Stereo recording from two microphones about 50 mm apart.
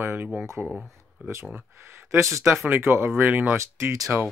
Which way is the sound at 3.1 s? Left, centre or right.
Right.